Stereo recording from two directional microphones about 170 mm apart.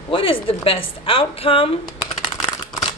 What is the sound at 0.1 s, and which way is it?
Speech, 30° left (ahead or behind).